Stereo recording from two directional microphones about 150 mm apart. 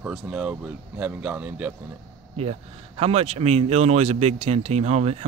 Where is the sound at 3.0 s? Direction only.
45° right (ahead or behind).